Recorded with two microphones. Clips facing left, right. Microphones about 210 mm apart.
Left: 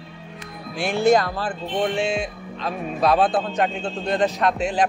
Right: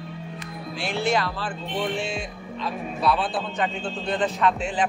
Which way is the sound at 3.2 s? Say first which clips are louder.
Left 6 dB; 45° left (ahead or behind).